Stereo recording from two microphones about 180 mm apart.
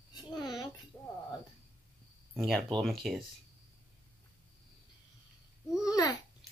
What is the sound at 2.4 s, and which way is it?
Speech, centre (ahead or behind).